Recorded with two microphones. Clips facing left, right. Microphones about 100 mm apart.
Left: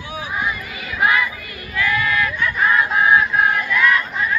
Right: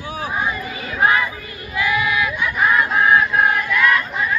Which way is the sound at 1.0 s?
30° right (ahead or behind).